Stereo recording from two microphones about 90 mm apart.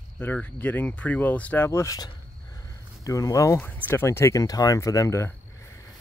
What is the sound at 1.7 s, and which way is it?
Speech, 35° left (ahead or behind).